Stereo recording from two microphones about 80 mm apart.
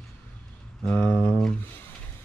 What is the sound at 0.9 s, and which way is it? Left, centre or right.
Speech, left.